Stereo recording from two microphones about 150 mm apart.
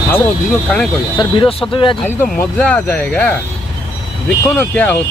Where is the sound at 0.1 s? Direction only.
5° left (ahead or behind).